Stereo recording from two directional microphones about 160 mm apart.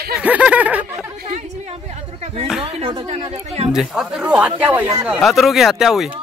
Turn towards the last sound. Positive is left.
turn(degrees=0)  # may be behind; listen again after turning